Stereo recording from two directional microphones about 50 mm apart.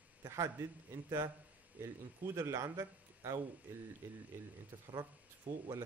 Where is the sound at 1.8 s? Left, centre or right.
Right.